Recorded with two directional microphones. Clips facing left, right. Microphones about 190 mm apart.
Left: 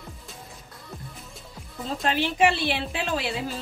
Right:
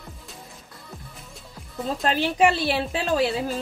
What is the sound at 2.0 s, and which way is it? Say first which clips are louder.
A woman's voice: right 2 dB; 40° right (ahead or behind).